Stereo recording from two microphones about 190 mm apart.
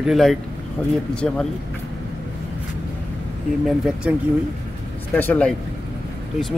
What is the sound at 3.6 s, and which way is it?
Speech, 5° right (ahead or behind).